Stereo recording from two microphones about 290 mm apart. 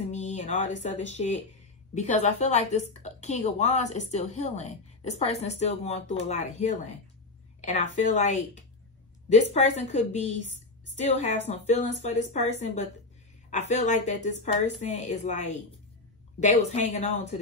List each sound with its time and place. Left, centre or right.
0.1 s a woman's voice: left